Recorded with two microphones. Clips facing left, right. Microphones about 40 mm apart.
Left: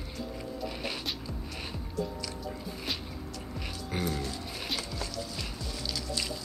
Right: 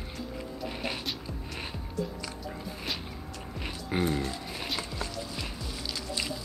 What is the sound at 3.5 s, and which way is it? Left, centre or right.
Music, right.